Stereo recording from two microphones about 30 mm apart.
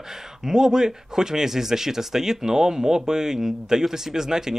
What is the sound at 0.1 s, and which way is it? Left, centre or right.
Speech, centre.